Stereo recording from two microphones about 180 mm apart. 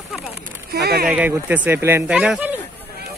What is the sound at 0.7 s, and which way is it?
Speech, 65° right (ahead or behind).